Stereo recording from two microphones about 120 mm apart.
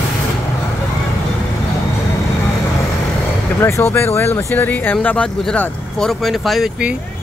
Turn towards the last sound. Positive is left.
turn(degrees=-5)  # may be behind; listen again after turning